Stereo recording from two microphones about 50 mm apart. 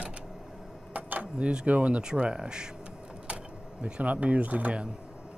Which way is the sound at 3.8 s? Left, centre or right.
Right.